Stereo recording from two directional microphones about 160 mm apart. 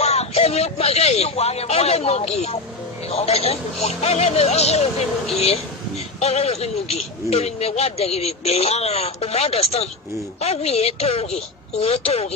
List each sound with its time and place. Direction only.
0.0 s a man's voice: 40° left (ahead or behind)
6.1 s a man's voice: 40° left (ahead or behind)